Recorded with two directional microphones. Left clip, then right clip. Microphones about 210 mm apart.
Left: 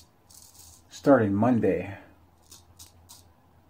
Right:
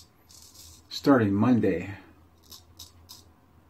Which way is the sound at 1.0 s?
Centre (ahead or behind).